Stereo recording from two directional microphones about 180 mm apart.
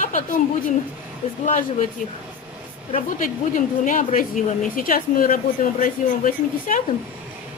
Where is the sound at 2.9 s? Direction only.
45° left (ahead or behind).